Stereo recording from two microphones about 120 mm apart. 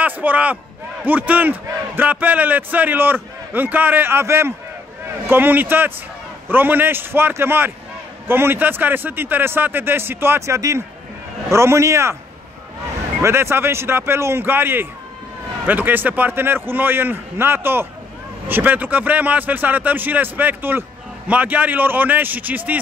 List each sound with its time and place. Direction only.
0.0 s a man's voice: 15° right (ahead or behind)
13.2 s a man's voice: 20° right (ahead or behind)